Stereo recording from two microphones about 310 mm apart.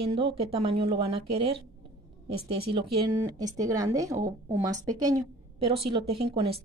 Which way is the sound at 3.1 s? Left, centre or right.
Centre.